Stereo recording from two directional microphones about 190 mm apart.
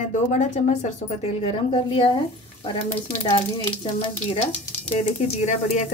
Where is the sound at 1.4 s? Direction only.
30° left (ahead or behind).